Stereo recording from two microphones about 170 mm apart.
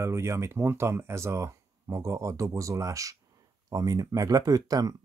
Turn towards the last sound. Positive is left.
turn(degrees=-20)  # may be behind; listen again after turning